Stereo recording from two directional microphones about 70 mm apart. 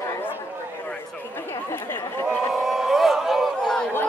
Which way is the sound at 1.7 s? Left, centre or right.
Left.